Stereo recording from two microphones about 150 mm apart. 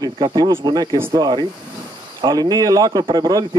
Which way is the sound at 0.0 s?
30° right (ahead or behind).